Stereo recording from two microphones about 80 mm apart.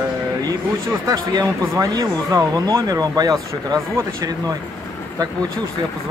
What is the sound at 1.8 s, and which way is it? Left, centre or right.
A man's voice, right.